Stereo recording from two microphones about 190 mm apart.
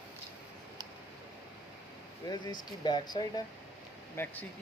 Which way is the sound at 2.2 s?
20° left (ahead or behind).